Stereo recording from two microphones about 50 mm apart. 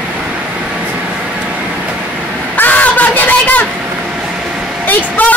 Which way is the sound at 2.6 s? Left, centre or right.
Left.